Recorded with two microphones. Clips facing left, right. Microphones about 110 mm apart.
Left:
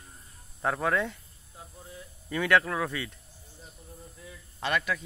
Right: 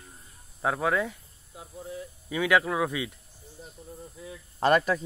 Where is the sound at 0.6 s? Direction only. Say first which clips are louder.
Right 1 dB; 5° right (ahead or behind).